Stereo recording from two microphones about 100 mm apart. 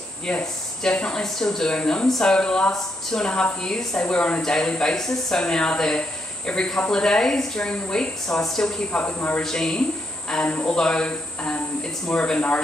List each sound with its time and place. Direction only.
0.3 s speech: 10° left (ahead or behind)
9.0 s speech: 15° left (ahead or behind)
9.4 s speech: 5° left (ahead or behind)